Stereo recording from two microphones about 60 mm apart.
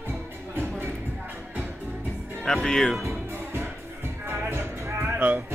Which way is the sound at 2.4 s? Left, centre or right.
Centre.